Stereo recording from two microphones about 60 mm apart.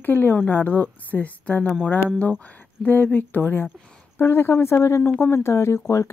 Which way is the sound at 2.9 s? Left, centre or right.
Left.